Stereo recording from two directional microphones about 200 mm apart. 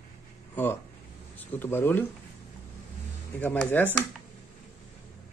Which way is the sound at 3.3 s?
5° left (ahead or behind).